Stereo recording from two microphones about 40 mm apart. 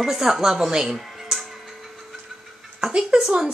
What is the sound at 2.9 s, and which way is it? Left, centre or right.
Speech, centre.